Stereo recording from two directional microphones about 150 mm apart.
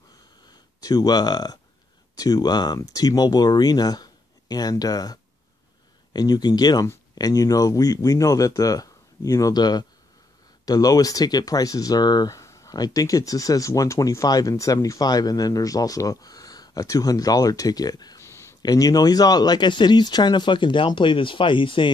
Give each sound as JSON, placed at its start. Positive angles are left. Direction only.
{"t": 0.7, "sound": "speech", "side_deg": 25}